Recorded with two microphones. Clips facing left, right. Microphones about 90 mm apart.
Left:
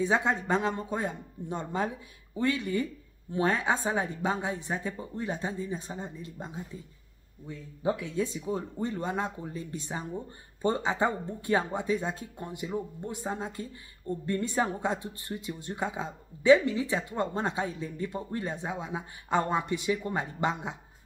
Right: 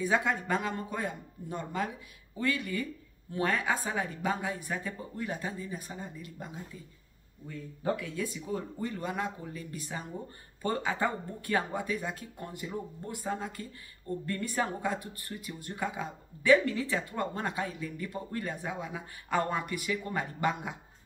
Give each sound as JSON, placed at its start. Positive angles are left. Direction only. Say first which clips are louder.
{"t": 0.0, "sound": "speech", "louder": "left 2 dB", "side_deg": 25}